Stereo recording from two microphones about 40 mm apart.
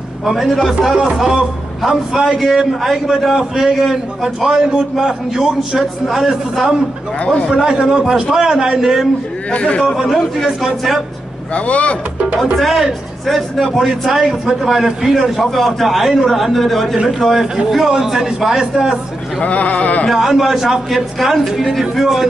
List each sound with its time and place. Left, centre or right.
0.2 s a man's voice: centre
2.3 s a man's voice: centre
9.5 s sheep: left
9.8 s a man's voice: centre
11.5 s sheep: left
12.5 s a man's voice: centre
19.4 s sheep: left
20.1 s a man's voice: centre